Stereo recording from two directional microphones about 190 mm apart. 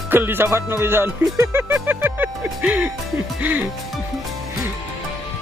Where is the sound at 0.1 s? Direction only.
10° right (ahead or behind).